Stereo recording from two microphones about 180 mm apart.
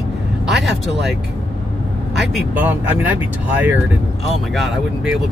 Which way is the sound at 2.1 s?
5° right (ahead or behind).